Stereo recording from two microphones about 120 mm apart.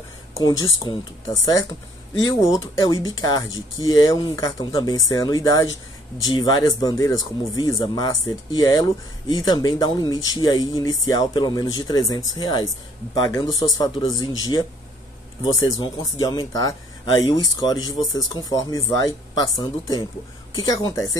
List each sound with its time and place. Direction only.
0.4 s speech: 35° left (ahead or behind)